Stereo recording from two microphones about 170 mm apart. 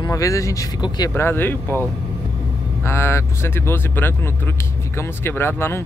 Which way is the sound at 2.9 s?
15° left (ahead or behind).